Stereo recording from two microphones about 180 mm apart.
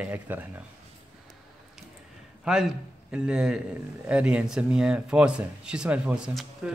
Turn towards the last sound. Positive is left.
turn(degrees=0)  # may be behind; listen again after turning